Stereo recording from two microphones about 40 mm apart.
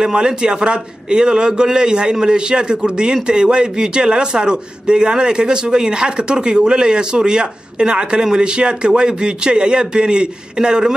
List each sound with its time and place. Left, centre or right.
0.0 s a man's voice: right